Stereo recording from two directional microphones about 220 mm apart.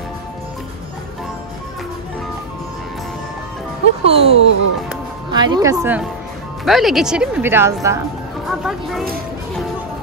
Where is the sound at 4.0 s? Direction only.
25° right (ahead or behind).